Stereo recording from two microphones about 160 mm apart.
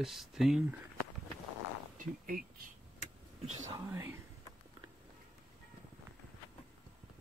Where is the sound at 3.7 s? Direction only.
20° right (ahead or behind).